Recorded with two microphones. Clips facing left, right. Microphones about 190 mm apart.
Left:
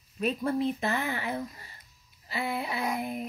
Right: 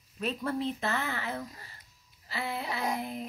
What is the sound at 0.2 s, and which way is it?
Speech, 15° left (ahead or behind).